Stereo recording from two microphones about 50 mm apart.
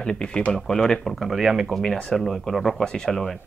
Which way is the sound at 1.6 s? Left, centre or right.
Centre.